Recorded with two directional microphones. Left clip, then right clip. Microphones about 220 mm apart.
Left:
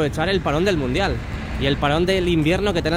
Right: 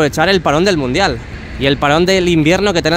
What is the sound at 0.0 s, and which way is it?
Speech, 35° right (ahead or behind).